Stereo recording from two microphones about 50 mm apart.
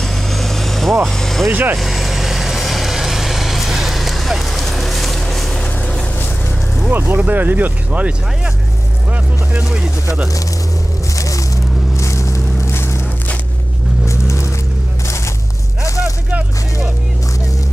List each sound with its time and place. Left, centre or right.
0.0 s vehicle: centre
1.0 s speech: centre
1.5 s speech: right
1.8 s vehicle: centre
6.9 s speech: right
9.1 s speech: right
11.1 s a sound: left
14.0 s vehicle: left